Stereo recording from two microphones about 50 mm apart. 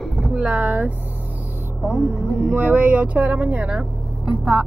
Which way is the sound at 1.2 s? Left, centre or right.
Right.